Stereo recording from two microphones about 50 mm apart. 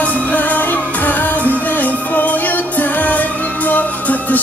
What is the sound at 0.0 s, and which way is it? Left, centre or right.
Music, left.